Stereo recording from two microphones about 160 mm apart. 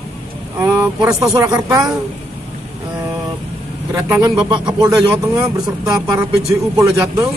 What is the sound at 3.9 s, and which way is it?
Speech, 20° right (ahead or behind).